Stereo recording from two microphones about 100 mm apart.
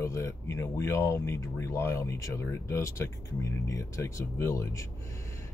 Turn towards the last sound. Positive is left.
turn(degrees=30)  # may be behind; listen again after turning